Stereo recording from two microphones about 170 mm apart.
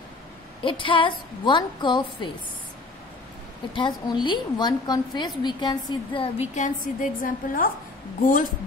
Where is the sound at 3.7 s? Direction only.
25° left (ahead or behind).